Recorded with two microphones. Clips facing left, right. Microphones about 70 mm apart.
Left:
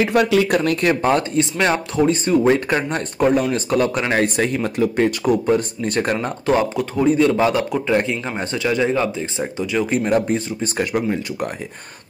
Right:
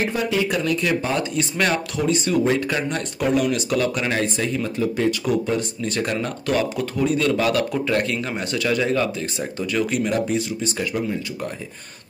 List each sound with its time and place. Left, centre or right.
0.1 s speech: left
1.3 s speech: left
2.0 s speech: left
4.1 s speech: left
6.2 s speech: left
9.8 s speech: left